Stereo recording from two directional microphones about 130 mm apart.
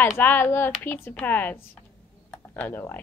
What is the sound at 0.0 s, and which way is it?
A woman's voice, 15° left (ahead or behind).